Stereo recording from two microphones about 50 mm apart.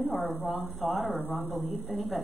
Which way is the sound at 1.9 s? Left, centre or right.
Centre.